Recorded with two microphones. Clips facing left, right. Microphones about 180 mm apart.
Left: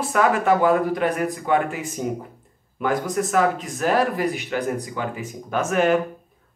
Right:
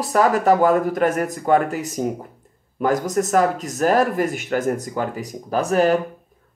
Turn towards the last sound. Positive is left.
turn(degrees=-35)  # may be behind; listen again after turning